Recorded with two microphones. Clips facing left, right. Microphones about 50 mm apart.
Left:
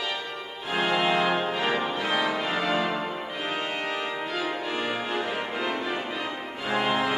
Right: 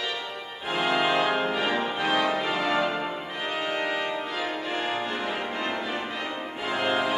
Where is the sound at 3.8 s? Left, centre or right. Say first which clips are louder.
Right 1 dB; centre.